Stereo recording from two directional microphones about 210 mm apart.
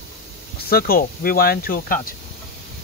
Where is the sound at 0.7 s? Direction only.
45° left (ahead or behind).